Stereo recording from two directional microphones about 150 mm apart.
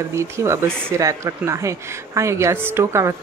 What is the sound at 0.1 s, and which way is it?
Speech, 20° right (ahead or behind).